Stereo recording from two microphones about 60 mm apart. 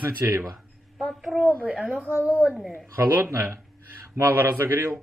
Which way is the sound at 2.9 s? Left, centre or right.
Right.